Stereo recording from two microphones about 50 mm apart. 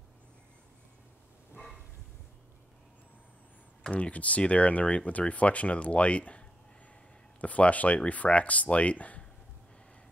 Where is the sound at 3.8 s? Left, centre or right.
Left.